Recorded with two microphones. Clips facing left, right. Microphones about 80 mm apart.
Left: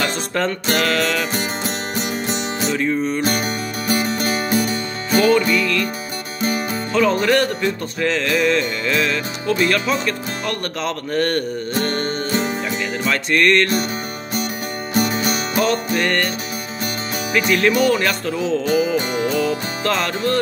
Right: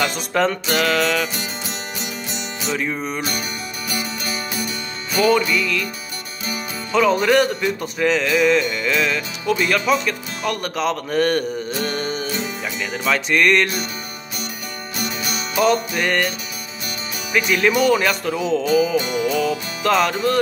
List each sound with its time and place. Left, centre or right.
0.0 s music: centre
2.7 s music: centre
3.3 s music: left
5.5 s music: centre
6.9 s music: centre
15.0 s music: left
15.6 s music: centre
17.3 s music: centre
18.9 s music: left
19.3 s music: centre